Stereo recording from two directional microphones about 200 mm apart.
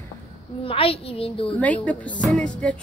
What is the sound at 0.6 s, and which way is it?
Speech, 25° left (ahead or behind).